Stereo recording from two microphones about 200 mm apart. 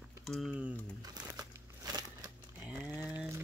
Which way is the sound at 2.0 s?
20° right (ahead or behind).